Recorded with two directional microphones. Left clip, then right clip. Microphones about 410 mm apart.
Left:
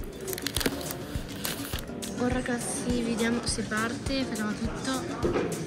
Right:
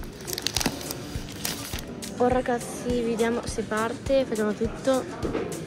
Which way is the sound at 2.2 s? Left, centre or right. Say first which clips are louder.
Right 7 dB; centre.